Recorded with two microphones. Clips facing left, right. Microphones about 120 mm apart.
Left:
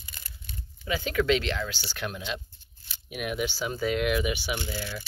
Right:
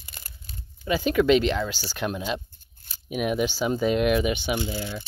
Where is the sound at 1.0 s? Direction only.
15° right (ahead or behind).